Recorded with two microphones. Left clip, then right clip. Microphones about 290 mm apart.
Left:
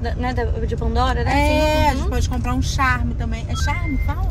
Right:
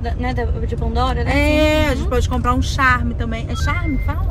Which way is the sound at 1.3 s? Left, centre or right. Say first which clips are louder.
Right 3 dB; centre.